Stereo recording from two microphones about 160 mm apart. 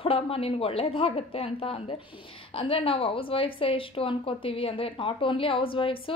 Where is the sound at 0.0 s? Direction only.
35° left (ahead or behind).